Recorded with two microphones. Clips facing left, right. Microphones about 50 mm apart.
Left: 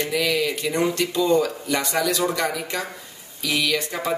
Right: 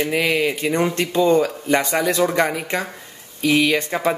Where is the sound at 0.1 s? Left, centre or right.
Right.